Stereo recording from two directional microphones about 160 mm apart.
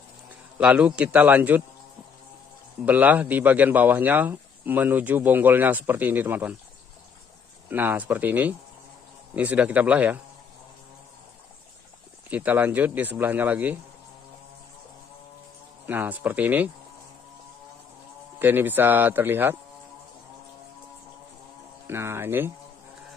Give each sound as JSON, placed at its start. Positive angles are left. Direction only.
{"t": 0.6, "sound": "speech", "side_deg": -10}
{"t": 2.8, "sound": "speech", "side_deg": -10}
{"t": 7.7, "sound": "speech", "side_deg": -10}
{"t": 12.3, "sound": "speech", "side_deg": -10}
{"t": 15.9, "sound": "speech", "side_deg": -10}
{"t": 18.4, "sound": "speech", "side_deg": -15}
{"t": 21.8, "sound": "speech", "side_deg": -15}